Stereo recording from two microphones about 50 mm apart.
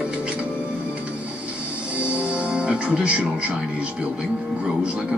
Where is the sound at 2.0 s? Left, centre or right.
Right.